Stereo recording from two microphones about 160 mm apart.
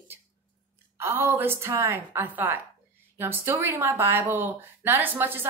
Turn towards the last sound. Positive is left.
turn(degrees=-15)  # may be behind; listen again after turning